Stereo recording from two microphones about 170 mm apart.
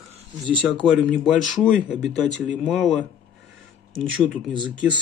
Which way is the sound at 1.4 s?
Centre (ahead or behind).